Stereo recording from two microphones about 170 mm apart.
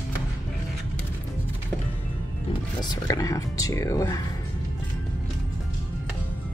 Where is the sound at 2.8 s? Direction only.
25° left (ahead or behind).